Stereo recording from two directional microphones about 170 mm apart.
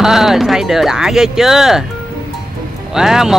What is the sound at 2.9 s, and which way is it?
Speech, 5° right (ahead or behind).